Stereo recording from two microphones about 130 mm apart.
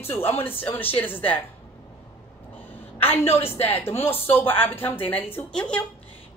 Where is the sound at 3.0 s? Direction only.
15° left (ahead or behind).